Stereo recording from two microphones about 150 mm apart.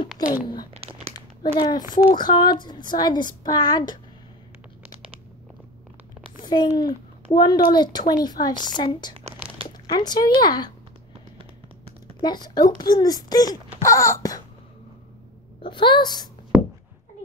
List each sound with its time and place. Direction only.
0.2 s speech: 25° left (ahead or behind)
0.7 s crumpling: 45° right (ahead or behind)
1.1 s a child's voice: 30° left (ahead or behind)
4.8 s a sound: 10° right (ahead or behind)
6.4 s a child's voice: 25° left (ahead or behind)
12.2 s a child's voice: 30° left (ahead or behind)
15.6 s speech: 35° left (ahead or behind)